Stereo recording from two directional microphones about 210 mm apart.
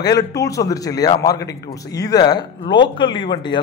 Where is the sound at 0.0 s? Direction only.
15° left (ahead or behind).